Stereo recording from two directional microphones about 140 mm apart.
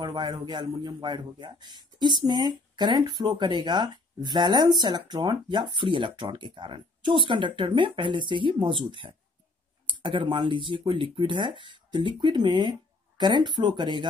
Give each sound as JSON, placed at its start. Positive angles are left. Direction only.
{"t": 0.0, "sound": "a man's voice", "side_deg": -30}